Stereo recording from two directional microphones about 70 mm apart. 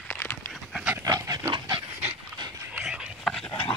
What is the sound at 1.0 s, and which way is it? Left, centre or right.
Dog, right.